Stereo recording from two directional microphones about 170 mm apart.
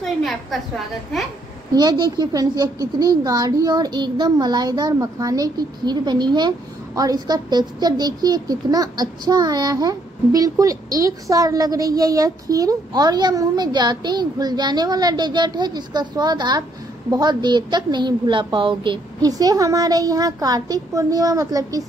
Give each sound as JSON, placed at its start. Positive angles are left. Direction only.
{"t": 0.0, "sound": "a woman's voice", "side_deg": 0}
{"t": 1.7, "sound": "a child's voice", "side_deg": -25}